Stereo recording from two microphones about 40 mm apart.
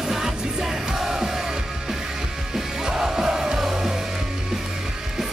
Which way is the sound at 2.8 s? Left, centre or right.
Centre.